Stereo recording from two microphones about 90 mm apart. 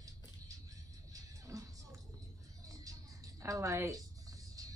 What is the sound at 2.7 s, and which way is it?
Music, 40° right (ahead or behind).